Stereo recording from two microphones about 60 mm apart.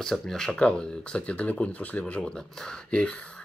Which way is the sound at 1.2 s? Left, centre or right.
Left.